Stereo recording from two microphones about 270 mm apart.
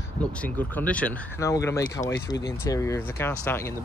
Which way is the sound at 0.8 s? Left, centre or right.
Centre.